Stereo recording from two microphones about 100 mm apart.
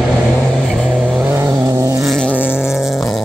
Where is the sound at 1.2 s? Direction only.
25° right (ahead or behind).